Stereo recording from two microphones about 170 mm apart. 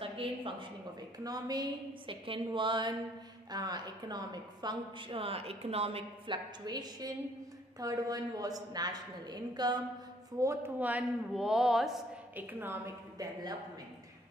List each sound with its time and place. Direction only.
0.0 s a woman's voice: 30° right (ahead or behind)
10.4 s speech: 15° right (ahead or behind)
12.5 s a woman's voice: 10° right (ahead or behind)